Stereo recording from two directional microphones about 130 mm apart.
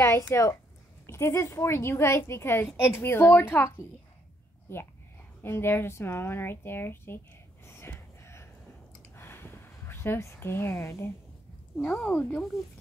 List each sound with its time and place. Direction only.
0.0 s a woman's voice: 20° left (ahead or behind)
5.4 s a woman's voice: 20° left (ahead or behind)
7.6 s a sound: 20° left (ahead or behind)
11.7 s a woman's voice: 10° left (ahead or behind)